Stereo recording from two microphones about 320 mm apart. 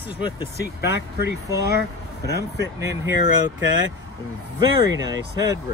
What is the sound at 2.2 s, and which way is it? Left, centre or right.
Speech, right.